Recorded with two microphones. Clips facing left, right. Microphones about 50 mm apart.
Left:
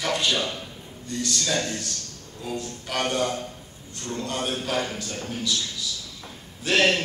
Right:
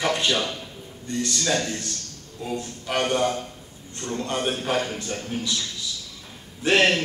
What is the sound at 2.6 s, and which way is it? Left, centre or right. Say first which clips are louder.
A man's voice: right 2 dB; right.